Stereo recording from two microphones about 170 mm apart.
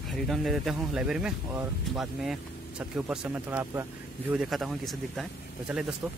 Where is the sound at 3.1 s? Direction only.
10° right (ahead or behind).